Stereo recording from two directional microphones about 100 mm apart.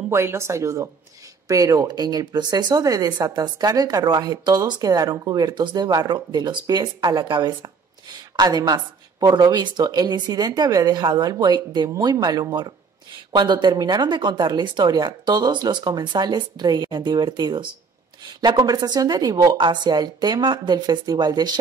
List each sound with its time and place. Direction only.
0.1 s speech: 30° right (ahead or behind)
19.5 s speech: 50° right (ahead or behind)